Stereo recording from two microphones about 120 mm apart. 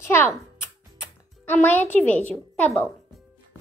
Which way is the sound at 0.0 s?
20° left (ahead or behind).